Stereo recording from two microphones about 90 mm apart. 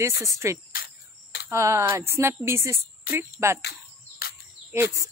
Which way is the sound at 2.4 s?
30° right (ahead or behind).